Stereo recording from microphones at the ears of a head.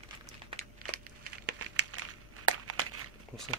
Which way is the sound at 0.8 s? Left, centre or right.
Right.